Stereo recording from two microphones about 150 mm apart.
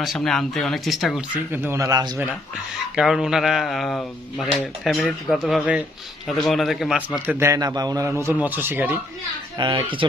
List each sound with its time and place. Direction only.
0.0 s speech: centre (ahead or behind)
1.5 s a man's voice: 15° right (ahead or behind)
3.0 s speech: 5° right (ahead or behind)
7.2 s a man's voice: 15° right (ahead or behind)
8.2 s speech: 15° right (ahead or behind)
9.6 s speech: 30° right (ahead or behind)